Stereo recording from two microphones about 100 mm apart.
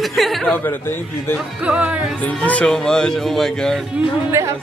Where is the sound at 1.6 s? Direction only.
15° right (ahead or behind).